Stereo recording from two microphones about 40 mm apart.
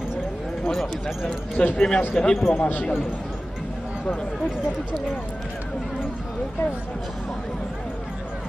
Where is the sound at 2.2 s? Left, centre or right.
Centre.